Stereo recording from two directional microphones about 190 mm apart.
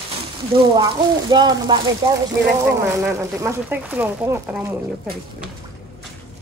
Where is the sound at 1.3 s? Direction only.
20° right (ahead or behind).